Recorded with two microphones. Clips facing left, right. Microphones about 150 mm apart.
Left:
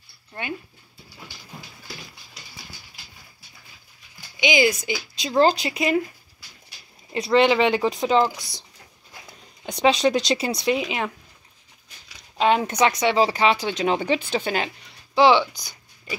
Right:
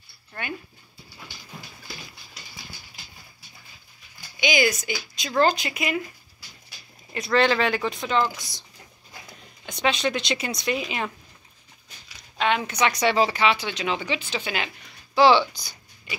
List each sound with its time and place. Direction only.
0.3 s speech: 25° left (ahead or behind)
4.4 s speech: 25° left (ahead or behind)
7.1 s speech: 25° left (ahead or behind)
7.8 s speech: 40° left (ahead or behind)
9.7 s speech: 35° left (ahead or behind)
12.4 s speech: 40° left (ahead or behind)
13.0 s speech: 20° left (ahead or behind)
13.3 s speech: 40° left (ahead or behind)
15.1 s speech: 20° left (ahead or behind)